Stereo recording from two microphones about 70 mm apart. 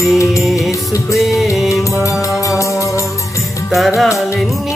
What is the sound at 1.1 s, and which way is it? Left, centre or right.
Speech, centre.